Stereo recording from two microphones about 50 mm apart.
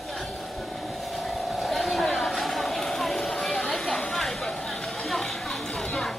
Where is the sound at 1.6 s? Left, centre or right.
Centre.